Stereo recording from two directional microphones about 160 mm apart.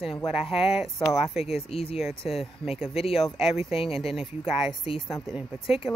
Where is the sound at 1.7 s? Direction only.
35° left (ahead or behind).